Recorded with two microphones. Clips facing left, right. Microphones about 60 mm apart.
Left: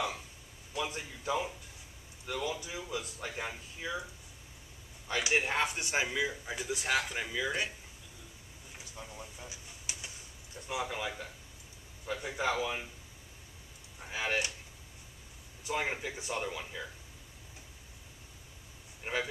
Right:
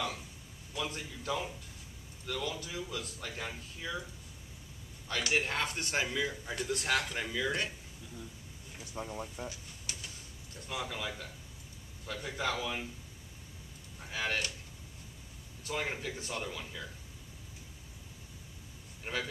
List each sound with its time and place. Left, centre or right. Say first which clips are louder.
0.7 s speech: left 1 dB; centre
5.0 s speech: left 1 dB; centre
9.1 s speech: right 6 dB; centre
9.5 s bird: right 1 dB; centre
12.1 s speech: left 2 dB; centre
13.9 s speech: left 1 dB; centre
15.6 s speech: left 2 dB; centre
19.1 s speech: left 2 dB; centre